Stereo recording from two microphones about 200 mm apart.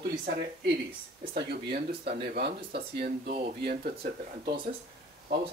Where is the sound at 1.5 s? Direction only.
55° right (ahead or behind).